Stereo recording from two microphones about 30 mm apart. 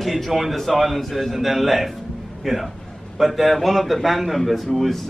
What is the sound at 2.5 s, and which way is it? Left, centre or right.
Speech, centre.